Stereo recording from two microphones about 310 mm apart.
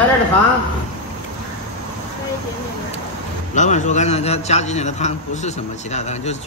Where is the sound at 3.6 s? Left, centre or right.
Left.